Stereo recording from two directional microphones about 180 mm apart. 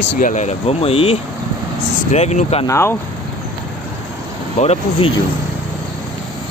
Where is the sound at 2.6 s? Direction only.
15° left (ahead or behind).